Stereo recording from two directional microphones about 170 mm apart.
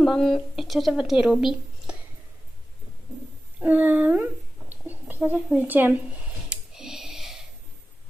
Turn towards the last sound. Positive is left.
turn(degrees=0)  # may be behind; listen again after turning